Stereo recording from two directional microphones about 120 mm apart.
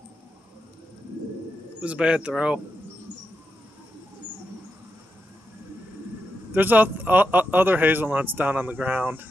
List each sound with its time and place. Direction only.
1.8 s speech: 10° right (ahead or behind)
6.5 s speech: 15° right (ahead or behind)